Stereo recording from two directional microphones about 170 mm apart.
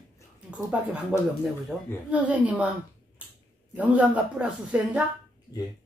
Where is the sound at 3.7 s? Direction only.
10° right (ahead or behind).